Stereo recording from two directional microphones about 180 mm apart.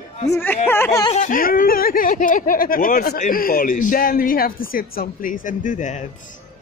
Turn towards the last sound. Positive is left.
turn(degrees=45)  # may be behind; listen again after turning